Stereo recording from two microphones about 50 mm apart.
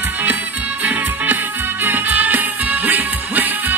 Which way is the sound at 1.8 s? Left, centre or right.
Right.